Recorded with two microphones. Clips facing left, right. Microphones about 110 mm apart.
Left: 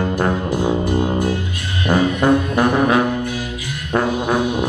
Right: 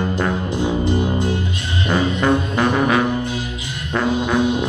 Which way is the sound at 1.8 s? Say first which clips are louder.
Left 3 dB; 15° left (ahead or behind).